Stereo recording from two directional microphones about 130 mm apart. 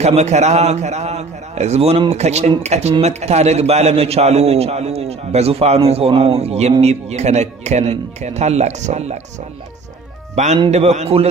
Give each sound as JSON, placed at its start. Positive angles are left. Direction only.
{"t": 0.0, "sound": "a man's voice", "side_deg": -60}
{"t": 10.3, "sound": "a man's voice", "side_deg": -60}